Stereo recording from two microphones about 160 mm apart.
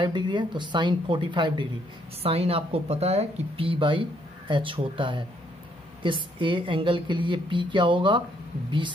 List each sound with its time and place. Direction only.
0.0 s a woman's voice: 30° right (ahead or behind)